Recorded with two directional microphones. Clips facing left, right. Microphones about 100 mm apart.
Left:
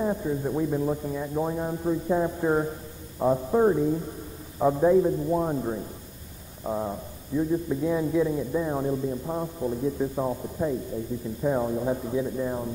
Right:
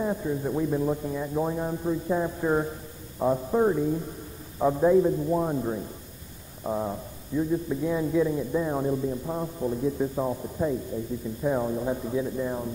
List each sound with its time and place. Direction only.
0.0 s a man's voice: 10° left (ahead or behind)
1.9 s a man's voice: 20° left (ahead or behind); by 7.0 s centre (ahead or behind)
7.3 s speech: 15° left (ahead or behind)